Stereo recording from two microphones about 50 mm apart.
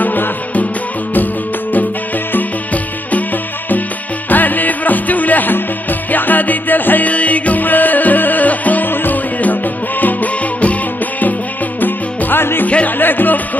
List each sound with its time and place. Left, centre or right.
0.0 s music: left
4.3 s music: left
12.6 s music: left
13.0 s music: left